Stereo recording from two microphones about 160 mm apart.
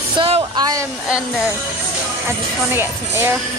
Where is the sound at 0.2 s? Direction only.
30° right (ahead or behind).